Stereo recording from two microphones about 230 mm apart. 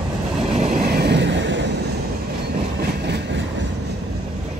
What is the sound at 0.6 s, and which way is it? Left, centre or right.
Vehicle, right.